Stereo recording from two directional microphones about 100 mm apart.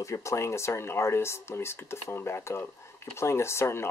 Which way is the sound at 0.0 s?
30° left (ahead or behind).